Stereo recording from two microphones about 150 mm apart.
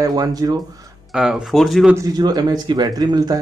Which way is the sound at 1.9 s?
25° right (ahead or behind).